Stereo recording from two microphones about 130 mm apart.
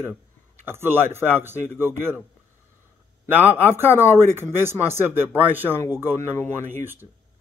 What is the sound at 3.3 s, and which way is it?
Speech, 15° right (ahead or behind).